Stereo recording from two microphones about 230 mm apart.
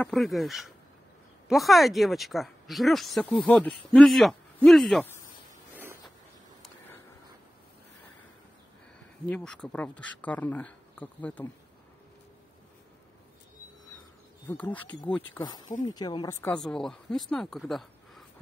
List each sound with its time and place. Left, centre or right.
0.0 s speech: centre
5.8 s a sound: centre
9.3 s speech: centre
14.5 s speech: centre
15.8 s speech: centre
16.5 s speech: centre